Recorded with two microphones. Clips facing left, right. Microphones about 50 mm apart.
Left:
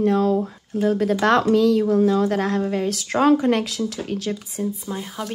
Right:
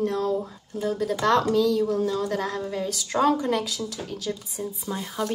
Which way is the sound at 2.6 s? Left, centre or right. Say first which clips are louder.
Left 6 dB; left.